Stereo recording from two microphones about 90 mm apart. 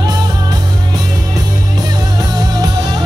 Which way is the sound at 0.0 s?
50° right (ahead or behind).